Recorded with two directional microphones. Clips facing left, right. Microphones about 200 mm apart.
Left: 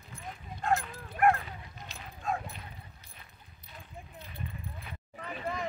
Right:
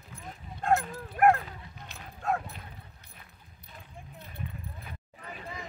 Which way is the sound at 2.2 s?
65° right (ahead or behind).